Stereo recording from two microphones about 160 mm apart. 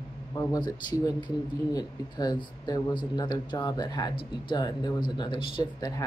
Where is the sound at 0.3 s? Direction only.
20° left (ahead or behind).